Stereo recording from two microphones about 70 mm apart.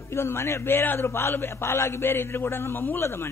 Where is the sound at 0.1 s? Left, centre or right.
Left.